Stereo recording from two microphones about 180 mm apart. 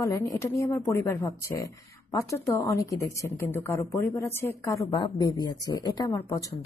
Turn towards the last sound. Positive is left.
turn(degrees=20)  # may be behind; listen again after turning